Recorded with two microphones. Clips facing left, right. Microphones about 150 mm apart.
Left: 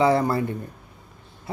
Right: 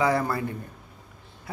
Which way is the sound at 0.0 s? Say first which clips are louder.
Left 4 dB; 25° left (ahead or behind).